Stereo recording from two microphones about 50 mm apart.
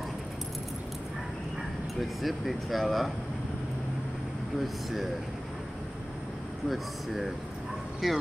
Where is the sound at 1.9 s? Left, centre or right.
Centre.